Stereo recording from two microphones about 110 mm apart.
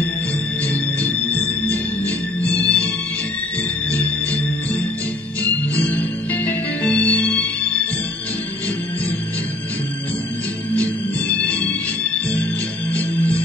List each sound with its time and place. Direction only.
0.9 s music: 15° left (ahead or behind)
3.9 s music: 15° left (ahead or behind)
10.8 s music: 15° left (ahead or behind)
12.9 s music: 15° left (ahead or behind)